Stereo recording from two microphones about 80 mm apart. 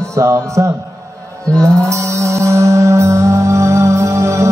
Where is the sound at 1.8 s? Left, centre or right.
Right.